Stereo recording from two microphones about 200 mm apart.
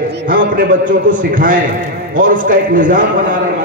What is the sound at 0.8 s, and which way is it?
A man's voice, 40° right (ahead or behind).